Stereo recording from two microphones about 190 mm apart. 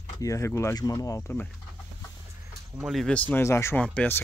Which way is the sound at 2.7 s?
Centre (ahead or behind).